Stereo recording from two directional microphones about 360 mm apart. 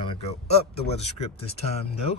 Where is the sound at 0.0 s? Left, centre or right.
Centre.